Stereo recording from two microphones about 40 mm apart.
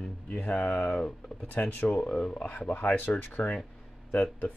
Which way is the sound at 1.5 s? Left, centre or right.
Left.